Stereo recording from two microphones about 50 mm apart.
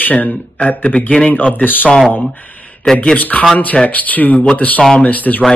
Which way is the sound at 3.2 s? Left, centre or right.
Left.